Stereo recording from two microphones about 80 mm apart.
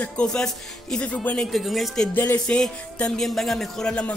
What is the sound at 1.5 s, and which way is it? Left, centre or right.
Speech, centre.